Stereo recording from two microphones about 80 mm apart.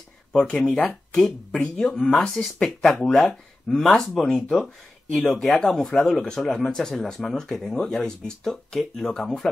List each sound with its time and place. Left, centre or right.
0.3 s speech: centre
5.0 s speech: centre
5.3 s speech: centre